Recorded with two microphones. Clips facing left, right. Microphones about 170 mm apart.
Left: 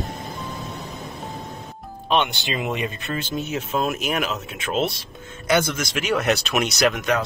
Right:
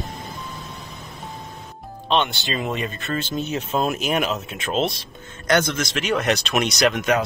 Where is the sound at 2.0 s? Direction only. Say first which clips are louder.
Even; 10° left (ahead or behind).